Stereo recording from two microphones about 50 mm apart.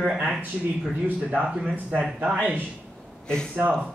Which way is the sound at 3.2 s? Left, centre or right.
Centre.